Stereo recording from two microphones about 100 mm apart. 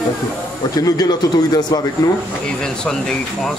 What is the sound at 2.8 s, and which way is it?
Speech, 5° left (ahead or behind).